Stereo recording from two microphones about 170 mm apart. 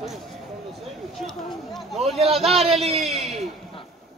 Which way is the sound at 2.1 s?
35° right (ahead or behind).